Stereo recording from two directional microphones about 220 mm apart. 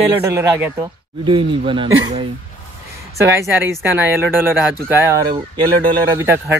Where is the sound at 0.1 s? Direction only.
10° right (ahead or behind).